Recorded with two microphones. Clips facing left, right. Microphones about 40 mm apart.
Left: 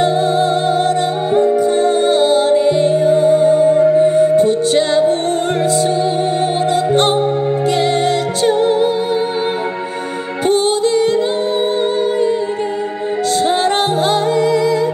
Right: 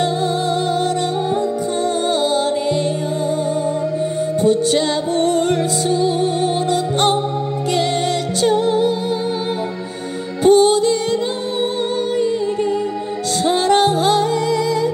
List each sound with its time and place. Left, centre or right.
1.4 s music: left
3.8 s music: left
10.4 s music: left
13.7 s music: left